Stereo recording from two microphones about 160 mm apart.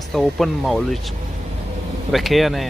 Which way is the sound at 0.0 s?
Centre (ahead or behind).